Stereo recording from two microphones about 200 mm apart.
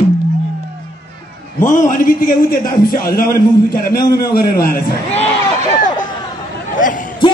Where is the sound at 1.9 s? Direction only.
45° left (ahead or behind).